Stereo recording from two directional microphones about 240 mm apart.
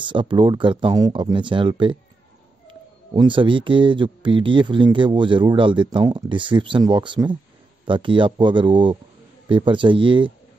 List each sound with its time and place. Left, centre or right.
0.0 s speech: centre
3.2 s speech: right